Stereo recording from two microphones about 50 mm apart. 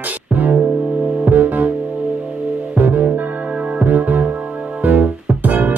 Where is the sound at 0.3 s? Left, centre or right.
Right.